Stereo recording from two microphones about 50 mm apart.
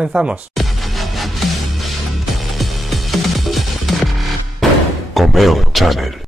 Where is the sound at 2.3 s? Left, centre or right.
Centre.